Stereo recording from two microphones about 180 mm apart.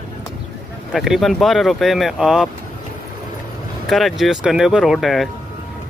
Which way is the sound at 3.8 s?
Centre (ahead or behind).